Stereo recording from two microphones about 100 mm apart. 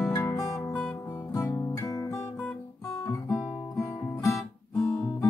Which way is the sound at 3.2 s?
5° left (ahead or behind).